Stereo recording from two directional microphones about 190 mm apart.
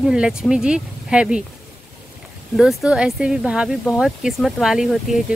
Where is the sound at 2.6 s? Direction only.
Centre (ahead or behind).